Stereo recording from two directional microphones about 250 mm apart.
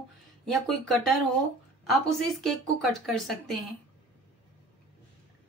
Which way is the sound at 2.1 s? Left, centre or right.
Centre.